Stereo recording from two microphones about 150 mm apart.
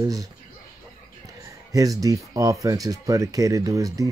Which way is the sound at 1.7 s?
25° right (ahead or behind).